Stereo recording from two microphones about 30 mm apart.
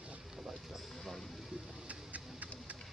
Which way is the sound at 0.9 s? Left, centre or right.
Centre.